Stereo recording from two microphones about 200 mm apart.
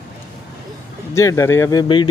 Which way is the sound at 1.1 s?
15° left (ahead or behind).